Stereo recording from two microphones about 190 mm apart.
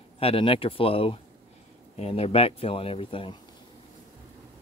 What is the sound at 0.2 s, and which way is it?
Speech, 30° left (ahead or behind).